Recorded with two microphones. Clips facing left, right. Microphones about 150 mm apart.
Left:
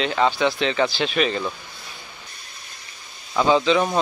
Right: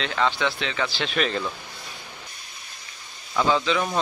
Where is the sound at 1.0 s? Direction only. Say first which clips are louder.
Left 3 dB; 5° left (ahead or behind).